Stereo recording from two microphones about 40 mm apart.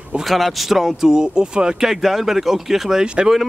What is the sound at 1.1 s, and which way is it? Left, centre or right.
Speech, right.